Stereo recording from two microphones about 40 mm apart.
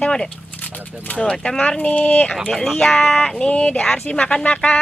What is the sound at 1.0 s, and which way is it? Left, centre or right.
Speech, left.